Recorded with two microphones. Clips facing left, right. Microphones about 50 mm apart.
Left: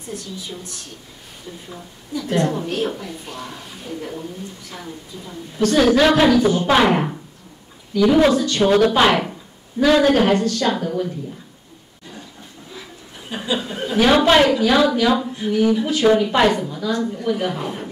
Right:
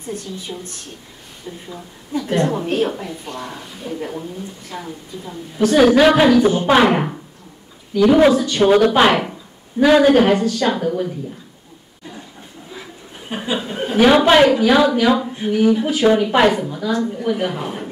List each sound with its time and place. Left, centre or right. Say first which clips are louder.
2.1 s a woman's voice: right 2 dB; right
2.6 s speech: right 4 dB; right
3.1 s a woman's voice: right 3 dB; centre
13.5 s speech: right 1 dB; centre
14.0 s a woman's voice: right 3 dB; centre